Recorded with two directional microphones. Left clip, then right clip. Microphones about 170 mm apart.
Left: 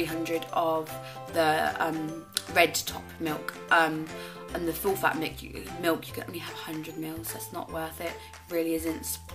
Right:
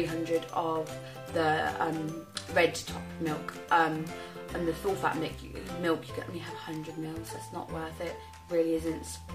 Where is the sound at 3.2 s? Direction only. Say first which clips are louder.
Left 3 dB; 15° left (ahead or behind).